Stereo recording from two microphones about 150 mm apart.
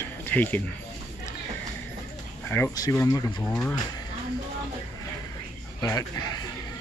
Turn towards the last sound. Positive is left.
turn(degrees=25)  # may be behind; listen again after turning